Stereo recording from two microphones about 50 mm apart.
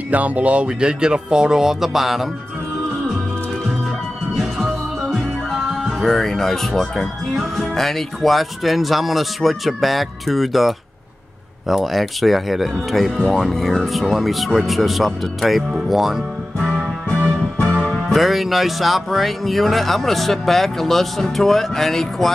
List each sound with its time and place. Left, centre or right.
0.1 s speech: right; by 2.2 s centre
4.4 s music: centre
11.6 s speech: centre
17.6 s music: centre
18.1 s speech: centre